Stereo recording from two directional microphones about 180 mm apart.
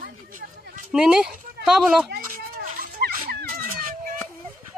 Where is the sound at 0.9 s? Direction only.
5° right (ahead or behind).